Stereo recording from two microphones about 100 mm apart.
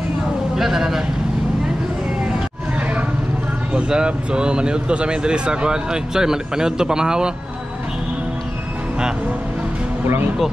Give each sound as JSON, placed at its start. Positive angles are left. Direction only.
{"t": 0.6, "sound": "speech", "side_deg": -5}
{"t": 3.7, "sound": "speech", "side_deg": -10}
{"t": 10.0, "sound": "speech", "side_deg": -20}